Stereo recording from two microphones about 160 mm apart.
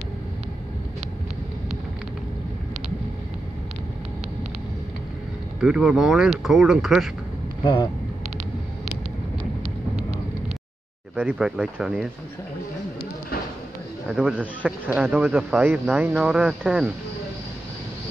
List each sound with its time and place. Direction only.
5.6 s speech: 5° right (ahead or behind)
7.6 s speech: 30° left (ahead or behind)
11.1 s speech: 5° right (ahead or behind)
14.0 s speech: 5° right (ahead or behind)